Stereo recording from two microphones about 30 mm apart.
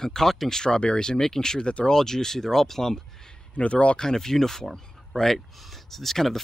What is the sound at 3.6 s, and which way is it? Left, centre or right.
Speech, left.